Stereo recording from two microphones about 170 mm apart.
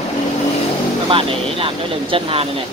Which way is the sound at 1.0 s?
30° right (ahead or behind).